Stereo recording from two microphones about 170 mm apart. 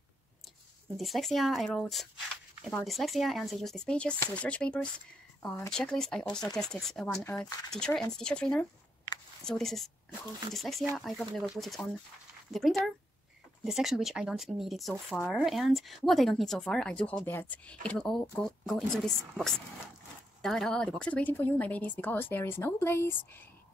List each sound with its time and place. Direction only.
0.9 s speech: centre (ahead or behind)
7.2 s speech: 15° left (ahead or behind)
7.7 s speech: 5° left (ahead or behind)